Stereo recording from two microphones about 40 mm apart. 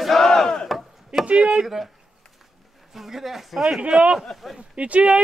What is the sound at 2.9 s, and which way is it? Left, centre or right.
A man's voice, centre.